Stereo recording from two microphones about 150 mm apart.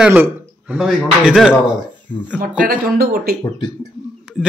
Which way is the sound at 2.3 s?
70° right (ahead or behind).